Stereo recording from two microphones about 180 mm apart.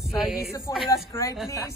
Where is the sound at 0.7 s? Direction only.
20° left (ahead or behind).